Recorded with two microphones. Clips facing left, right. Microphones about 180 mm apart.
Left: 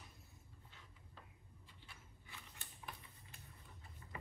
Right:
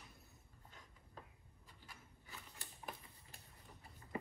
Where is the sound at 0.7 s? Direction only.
40° right (ahead or behind).